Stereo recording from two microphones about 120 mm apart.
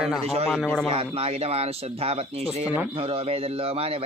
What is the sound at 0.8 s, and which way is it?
A man's voice, 50° right (ahead or behind).